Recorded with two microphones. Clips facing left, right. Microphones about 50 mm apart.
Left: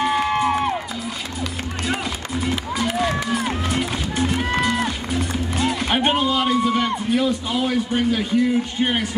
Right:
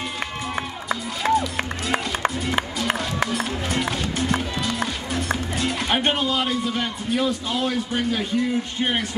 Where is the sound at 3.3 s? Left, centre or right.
Centre.